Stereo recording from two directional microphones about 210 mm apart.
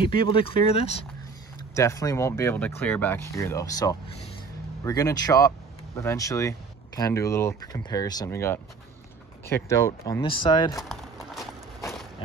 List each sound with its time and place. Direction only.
0.0 s speech: 25° left (ahead or behind)
1.7 s speech: 15° left (ahead or behind)
10.8 s a sound: centre (ahead or behind)